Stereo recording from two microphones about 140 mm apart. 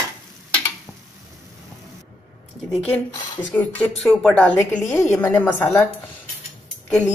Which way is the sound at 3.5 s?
10° left (ahead or behind).